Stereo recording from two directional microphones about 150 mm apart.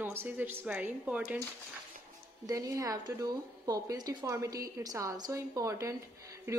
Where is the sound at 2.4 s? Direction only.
25° right (ahead or behind).